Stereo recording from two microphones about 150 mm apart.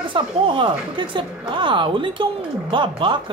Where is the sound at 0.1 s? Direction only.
35° right (ahead or behind).